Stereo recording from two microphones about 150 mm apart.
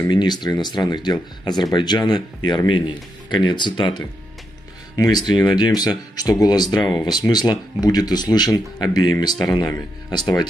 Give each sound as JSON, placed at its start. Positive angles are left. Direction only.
{"t": 0.1, "sound": "speech", "side_deg": 30}